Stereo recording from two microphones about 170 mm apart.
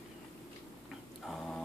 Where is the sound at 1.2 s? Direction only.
Centre (ahead or behind).